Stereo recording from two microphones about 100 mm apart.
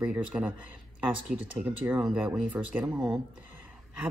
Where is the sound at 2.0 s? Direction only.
5° right (ahead or behind).